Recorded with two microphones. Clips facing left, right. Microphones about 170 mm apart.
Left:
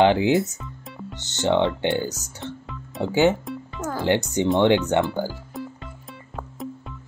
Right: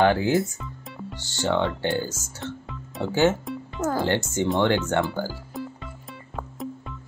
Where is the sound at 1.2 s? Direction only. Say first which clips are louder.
Left 4 dB; 20° left (ahead or behind).